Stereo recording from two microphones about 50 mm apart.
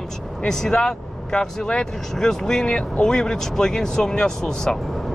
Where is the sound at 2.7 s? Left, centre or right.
Left.